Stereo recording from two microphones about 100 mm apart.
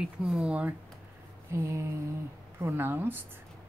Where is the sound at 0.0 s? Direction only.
5° right (ahead or behind).